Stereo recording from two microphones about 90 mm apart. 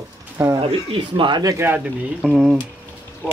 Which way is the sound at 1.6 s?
25° right (ahead or behind).